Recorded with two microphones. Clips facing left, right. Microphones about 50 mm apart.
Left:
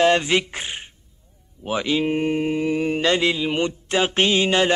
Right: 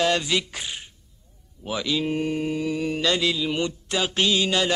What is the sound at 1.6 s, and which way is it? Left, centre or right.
Mantra, left.